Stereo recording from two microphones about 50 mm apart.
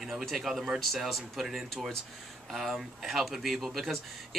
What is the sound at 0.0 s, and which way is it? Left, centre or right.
Speech, centre.